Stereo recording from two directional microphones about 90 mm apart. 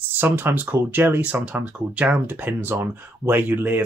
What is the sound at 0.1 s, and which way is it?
Speech, 25° right (ahead or behind).